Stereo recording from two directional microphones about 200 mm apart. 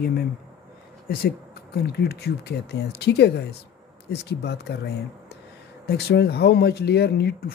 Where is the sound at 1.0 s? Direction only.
50° left (ahead or behind).